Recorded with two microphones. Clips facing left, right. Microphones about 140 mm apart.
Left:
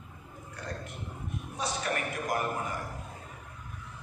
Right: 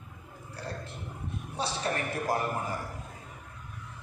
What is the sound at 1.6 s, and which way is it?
Speech, 30° right (ahead or behind).